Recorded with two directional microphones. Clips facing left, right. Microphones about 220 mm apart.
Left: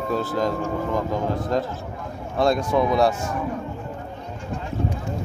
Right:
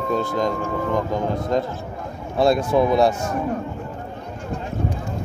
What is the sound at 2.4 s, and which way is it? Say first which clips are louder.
Speech: right 3 dB; 5° right (ahead or behind).